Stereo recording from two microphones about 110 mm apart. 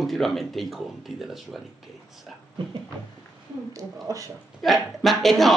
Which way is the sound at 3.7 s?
35° right (ahead or behind).